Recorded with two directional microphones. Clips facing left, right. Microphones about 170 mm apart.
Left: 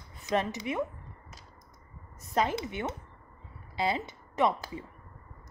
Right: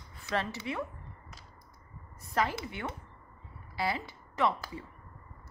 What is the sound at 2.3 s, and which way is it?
Speech, 20° left (ahead or behind).